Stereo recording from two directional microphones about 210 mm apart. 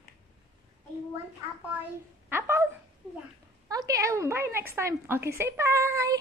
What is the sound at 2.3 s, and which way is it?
Dog, 10° right (ahead or behind).